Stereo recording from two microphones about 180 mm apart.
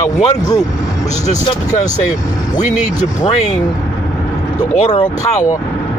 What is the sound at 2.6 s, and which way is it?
Speech, 40° left (ahead or behind).